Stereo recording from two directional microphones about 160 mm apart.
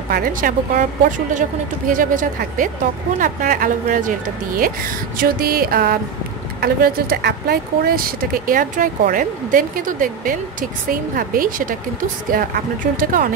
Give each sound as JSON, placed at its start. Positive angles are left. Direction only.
{"t": 0.1, "sound": "a woman's voice", "side_deg": -60}